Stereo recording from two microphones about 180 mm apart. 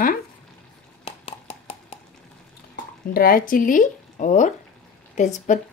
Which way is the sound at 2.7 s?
55° left (ahead or behind).